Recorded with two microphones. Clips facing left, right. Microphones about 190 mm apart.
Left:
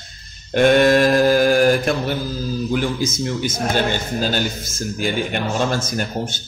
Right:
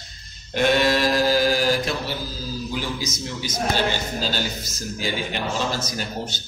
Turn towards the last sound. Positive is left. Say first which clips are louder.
# left 5 dB
turn(degrees=55)  # may be behind; listen again after turning